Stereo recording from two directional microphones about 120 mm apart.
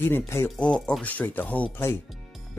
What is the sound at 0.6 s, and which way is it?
Speech, 10° left (ahead or behind).